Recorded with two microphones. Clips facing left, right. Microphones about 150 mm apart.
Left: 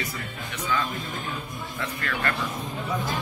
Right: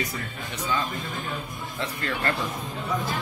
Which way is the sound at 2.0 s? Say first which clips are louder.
Right 1 dB; 30° right (ahead or behind).